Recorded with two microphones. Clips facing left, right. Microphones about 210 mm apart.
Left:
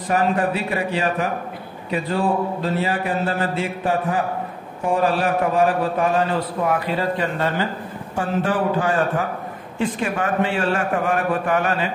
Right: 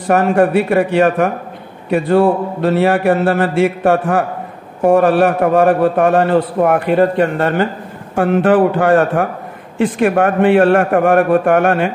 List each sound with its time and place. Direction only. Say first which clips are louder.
0.1 s a man's voice: right 8 dB; 60° right (ahead or behind)
9.8 s a woman's voice: right 8 dB; 80° right
10.0 s a man's voice: right 12 dB; 55° right (ahead or behind)